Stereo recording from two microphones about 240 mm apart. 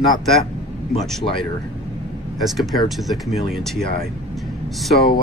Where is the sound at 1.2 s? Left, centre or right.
Left.